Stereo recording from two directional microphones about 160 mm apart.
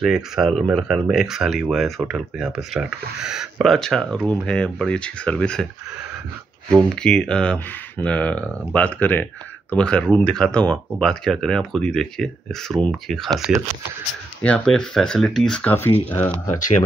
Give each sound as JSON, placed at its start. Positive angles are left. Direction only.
{"t": 0.0, "sound": "speech", "side_deg": 0}
{"t": 7.0, "sound": "speech", "side_deg": 5}
{"t": 14.4, "sound": "speech", "side_deg": 5}
{"t": 16.5, "sound": "speech", "side_deg": 55}